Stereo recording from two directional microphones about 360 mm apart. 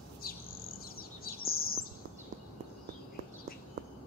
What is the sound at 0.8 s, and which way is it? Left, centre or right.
Chirp, left.